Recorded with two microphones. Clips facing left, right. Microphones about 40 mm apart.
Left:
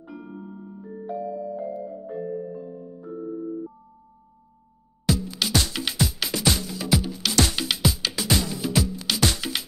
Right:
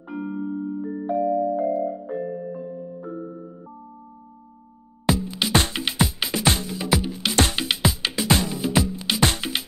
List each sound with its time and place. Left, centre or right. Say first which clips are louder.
0.1 s music: right 11 dB; centre
1.3 s music: right 9 dB; centre
1.9 s music: right 3 dB; right
5.0 s music: right 2 dB; right
6.4 s music: right 2 dB; right
6.7 s music: right 1 dB; right